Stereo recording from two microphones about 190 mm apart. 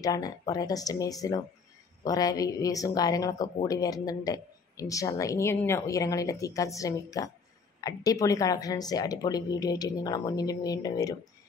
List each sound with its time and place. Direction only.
0.0 s speech: 20° left (ahead or behind)